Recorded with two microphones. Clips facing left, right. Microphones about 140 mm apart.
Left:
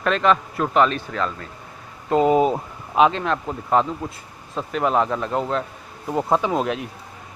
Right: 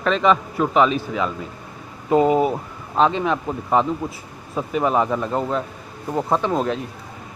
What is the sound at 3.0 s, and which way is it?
Speech, 5° right (ahead or behind).